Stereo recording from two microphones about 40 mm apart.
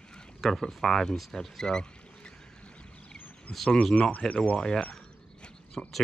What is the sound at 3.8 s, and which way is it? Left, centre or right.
Speech, left.